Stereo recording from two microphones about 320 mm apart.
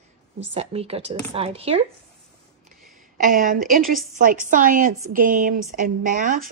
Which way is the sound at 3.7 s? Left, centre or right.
Right.